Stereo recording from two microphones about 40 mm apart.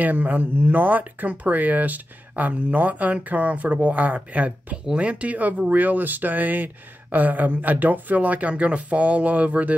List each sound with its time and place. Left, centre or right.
0.0 s speech: right